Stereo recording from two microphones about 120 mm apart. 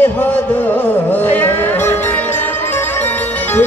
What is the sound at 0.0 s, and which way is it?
Music, 15° left (ahead or behind).